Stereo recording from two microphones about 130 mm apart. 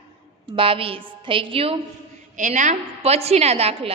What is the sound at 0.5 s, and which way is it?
A woman's voice, 45° right (ahead or behind).